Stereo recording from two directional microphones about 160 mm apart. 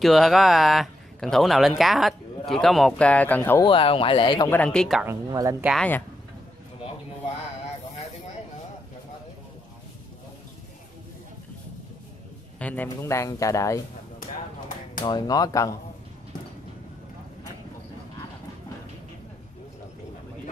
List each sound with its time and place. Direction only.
0.0 s speech: centre (ahead or behind)
3.6 s speech: 35° left (ahead or behind)
4.5 s speech: 5° left (ahead or behind)
5.0 s speech: 20° right (ahead or behind)
5.8 s speech: 10° left (ahead or behind)
12.5 s speech: 10° left (ahead or behind)
15.0 s speech: 25° left (ahead or behind)